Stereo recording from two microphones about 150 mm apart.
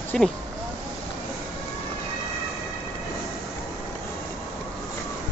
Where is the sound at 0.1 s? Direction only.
5° left (ahead or behind).